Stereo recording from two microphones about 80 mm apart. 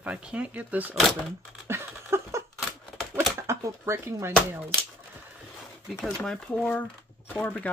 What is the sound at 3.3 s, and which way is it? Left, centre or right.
Speech, right.